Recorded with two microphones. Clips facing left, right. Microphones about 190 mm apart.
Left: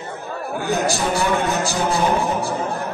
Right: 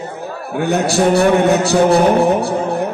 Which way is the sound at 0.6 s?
65° right (ahead or behind).